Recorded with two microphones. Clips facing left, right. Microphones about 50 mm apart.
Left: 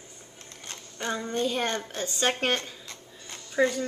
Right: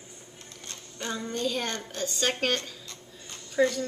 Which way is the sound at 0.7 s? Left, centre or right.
Left.